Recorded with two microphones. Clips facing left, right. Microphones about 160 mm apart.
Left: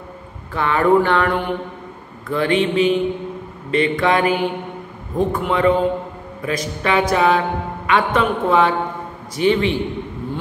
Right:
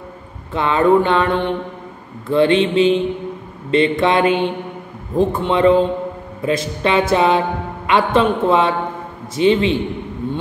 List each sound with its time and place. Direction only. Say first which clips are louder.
0.5 s a man's voice: right 2 dB; 20° right (ahead or behind)